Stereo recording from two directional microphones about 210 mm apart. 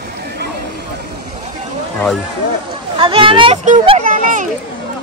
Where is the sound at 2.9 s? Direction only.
25° right (ahead or behind).